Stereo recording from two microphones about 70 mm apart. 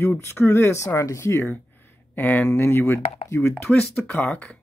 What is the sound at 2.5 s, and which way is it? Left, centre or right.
Speech, left.